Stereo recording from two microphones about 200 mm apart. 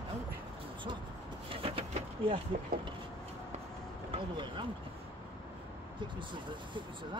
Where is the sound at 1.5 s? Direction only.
30° right (ahead or behind).